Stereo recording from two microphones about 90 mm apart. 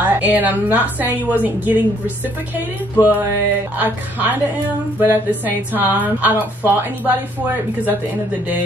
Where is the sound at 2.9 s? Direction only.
20° right (ahead or behind).